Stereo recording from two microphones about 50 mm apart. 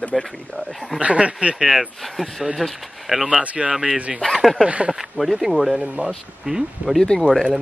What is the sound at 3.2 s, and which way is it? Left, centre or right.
Speech, right.